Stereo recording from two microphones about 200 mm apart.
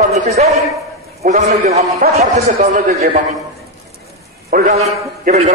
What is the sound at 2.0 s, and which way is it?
Speech, 45° right (ahead or behind).